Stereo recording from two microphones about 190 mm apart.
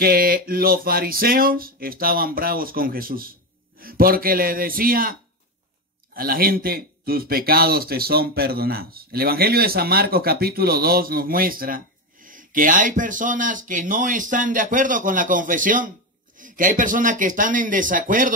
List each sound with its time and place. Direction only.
0.0 s speech: 50° right (ahead or behind)
6.1 s speech: 50° right (ahead or behind)